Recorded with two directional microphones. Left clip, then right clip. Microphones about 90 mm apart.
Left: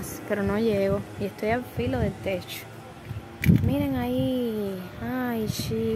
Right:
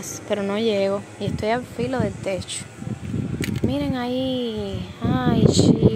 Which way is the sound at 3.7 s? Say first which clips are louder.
Right 2 dB; 20° right (ahead or behind).